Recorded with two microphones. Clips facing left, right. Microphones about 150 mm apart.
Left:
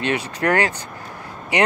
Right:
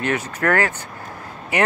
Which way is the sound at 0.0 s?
15° left (ahead or behind).